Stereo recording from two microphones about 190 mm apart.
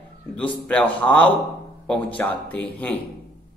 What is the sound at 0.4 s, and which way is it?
Speech, 5° left (ahead or behind).